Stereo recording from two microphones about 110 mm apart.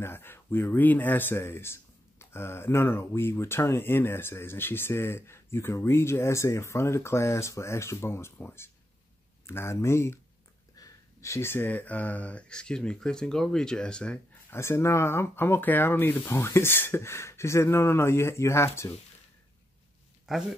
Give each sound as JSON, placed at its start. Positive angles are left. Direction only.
{"t": 0.0, "sound": "speech", "side_deg": 20}
{"t": 14.5, "sound": "speech", "side_deg": 25}
{"t": 20.2, "sound": "speech", "side_deg": -5}